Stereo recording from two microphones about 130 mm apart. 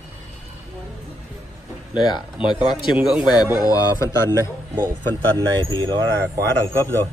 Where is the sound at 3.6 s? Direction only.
25° left (ahead or behind).